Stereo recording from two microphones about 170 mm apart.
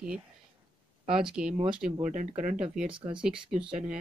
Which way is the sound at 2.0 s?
45° right (ahead or behind).